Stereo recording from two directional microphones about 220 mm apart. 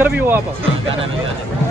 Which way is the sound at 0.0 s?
10° right (ahead or behind).